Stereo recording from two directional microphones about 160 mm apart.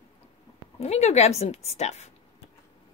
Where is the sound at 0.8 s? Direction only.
45° left (ahead or behind).